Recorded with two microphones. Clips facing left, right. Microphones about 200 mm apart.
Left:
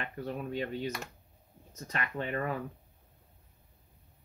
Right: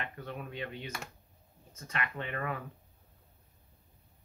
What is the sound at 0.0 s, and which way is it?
Speech, 35° left (ahead or behind).